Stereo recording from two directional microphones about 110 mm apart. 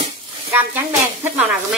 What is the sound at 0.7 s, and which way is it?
Speech, 20° right (ahead or behind).